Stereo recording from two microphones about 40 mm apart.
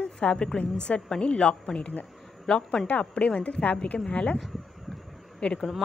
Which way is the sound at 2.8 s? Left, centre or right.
Left.